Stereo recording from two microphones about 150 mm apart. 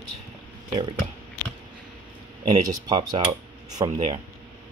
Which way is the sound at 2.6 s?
25° right (ahead or behind).